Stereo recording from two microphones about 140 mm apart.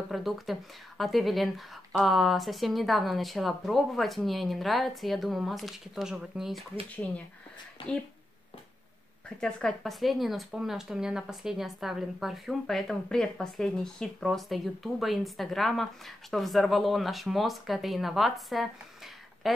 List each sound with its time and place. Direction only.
0.1 s speech: centre (ahead or behind)
7.8 s speech: 35° left (ahead or behind)
9.4 s speech: 5° left (ahead or behind)